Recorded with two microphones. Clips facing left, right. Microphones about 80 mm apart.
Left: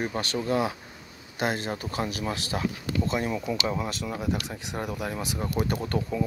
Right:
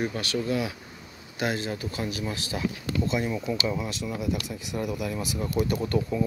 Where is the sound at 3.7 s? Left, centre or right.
Left.